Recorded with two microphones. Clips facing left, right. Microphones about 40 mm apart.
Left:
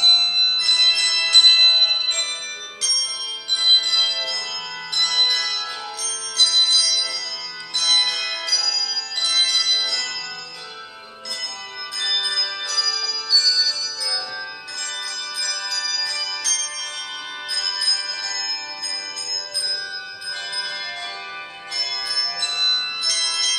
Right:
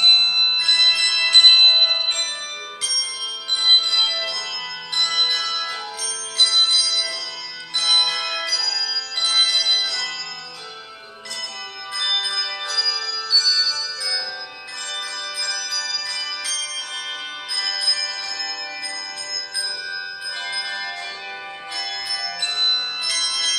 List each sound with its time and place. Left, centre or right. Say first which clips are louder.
0.0 s bell: right 1 dB; centre
2.8 s music: left 1 dB; centre
6.3 s bell: right 1 dB; centre
7.8 s bell: right 1 dB; centre
12.0 s music: right 1 dB; centre
15.7 s music: left 1 dB; centre
17.6 s music: right 1 dB; right
20.5 s music: right 1 dB; centre